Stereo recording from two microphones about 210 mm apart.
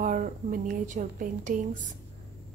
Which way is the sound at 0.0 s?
40° right (ahead or behind).